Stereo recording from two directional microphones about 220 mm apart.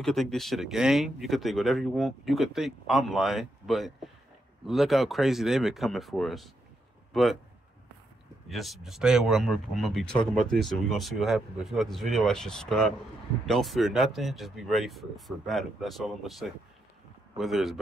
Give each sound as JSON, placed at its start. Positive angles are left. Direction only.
{"t": 0.0, "sound": "speech", "side_deg": 0}
{"t": 8.5, "sound": "speech", "side_deg": 0}